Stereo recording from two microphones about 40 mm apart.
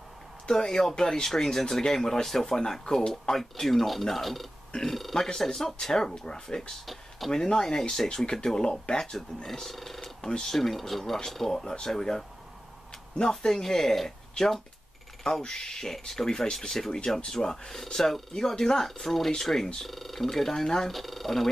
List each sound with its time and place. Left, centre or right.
0.5 s speech: centre
10.2 s speech: left
10.5 s speech: centre
13.2 s speech: centre
20.9 s speech: centre